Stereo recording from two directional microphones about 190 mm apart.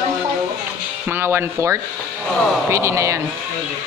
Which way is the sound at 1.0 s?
10° right (ahead or behind).